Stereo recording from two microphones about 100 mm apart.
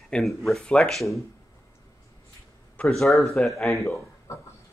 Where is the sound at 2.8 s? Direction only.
5° left (ahead or behind).